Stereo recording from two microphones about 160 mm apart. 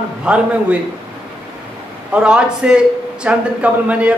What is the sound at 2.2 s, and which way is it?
A man's voice, 5° right (ahead or behind).